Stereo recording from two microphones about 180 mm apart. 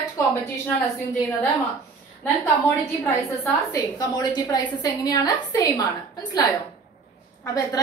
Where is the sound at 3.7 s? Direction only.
20° left (ahead or behind).